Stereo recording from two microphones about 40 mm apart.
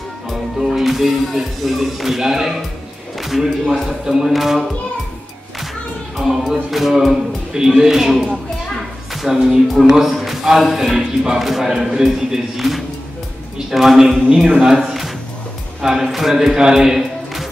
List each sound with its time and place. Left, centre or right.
0.3 s speech: centre
3.2 s a sound: centre
4.0 s speech: centre
4.3 s speech: centre
6.1 s a man's voice: centre
14.3 s speech: centre
14.8 s a sound: centre
15.8 s speech: centre